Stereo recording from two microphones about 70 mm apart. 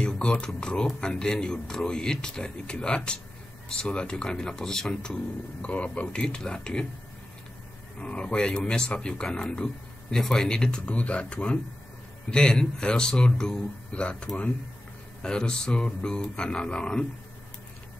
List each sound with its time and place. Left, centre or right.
0.0 s speech: centre
8.0 s speech: centre